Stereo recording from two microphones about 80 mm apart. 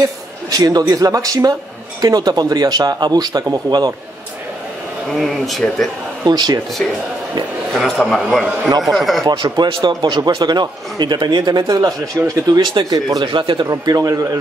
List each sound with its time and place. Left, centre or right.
0.5 s speech: right
5.1 s speech: centre
6.2 s speech: right
7.7 s a man's voice: centre
9.3 s speech: right
9.8 s speech: right
13.2 s speech: right
13.7 s speech: right